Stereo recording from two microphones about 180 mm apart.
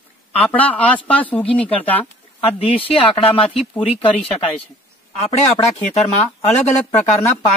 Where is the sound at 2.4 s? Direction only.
30° left (ahead or behind).